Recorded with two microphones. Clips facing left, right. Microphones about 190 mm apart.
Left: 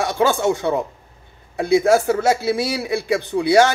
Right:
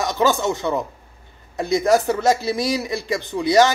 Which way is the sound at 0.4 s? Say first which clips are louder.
Left 3 dB; 10° left (ahead or behind).